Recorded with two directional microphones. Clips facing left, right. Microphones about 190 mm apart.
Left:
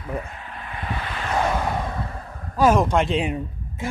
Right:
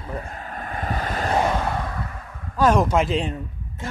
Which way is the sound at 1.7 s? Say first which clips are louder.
Left 1 dB; 25° left (ahead or behind).